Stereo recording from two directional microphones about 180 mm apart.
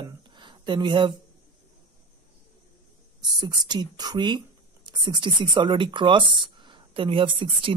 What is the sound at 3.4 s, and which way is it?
Speech, 25° right (ahead or behind).